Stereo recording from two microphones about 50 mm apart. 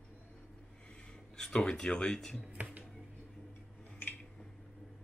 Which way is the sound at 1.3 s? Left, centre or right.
Centre.